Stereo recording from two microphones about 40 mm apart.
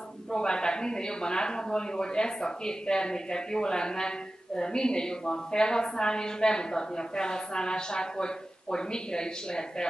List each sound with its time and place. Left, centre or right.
0.3 s a woman's voice: centre